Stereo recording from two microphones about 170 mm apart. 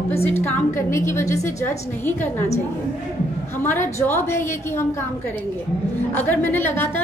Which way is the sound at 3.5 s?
15° left (ahead or behind).